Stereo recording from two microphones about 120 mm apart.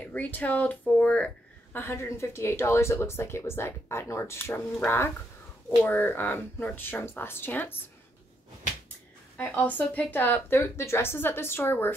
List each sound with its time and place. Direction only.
0.0 s speech: 15° left (ahead or behind)
9.4 s speech: 10° left (ahead or behind)